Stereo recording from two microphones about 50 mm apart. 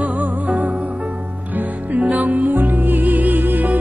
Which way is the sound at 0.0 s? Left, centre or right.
Right.